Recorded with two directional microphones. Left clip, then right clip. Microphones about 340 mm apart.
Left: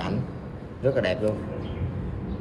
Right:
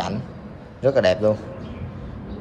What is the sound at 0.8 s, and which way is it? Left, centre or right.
Speech, centre.